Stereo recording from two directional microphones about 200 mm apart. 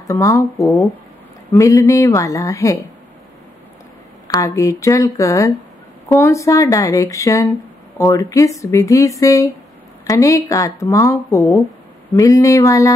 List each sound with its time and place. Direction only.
0.1 s speech: 15° left (ahead or behind)
4.3 s speech: 15° left (ahead or behind)